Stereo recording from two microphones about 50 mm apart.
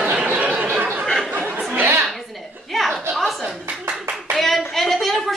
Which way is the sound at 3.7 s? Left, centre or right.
Right.